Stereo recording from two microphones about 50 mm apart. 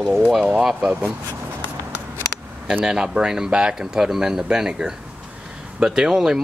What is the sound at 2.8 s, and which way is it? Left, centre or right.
Speech, centre.